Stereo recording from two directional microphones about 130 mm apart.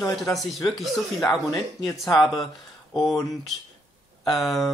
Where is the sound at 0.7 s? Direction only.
Centre (ahead or behind).